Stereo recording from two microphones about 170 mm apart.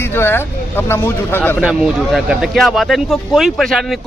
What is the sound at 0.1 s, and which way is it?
Speech, 15° left (ahead or behind).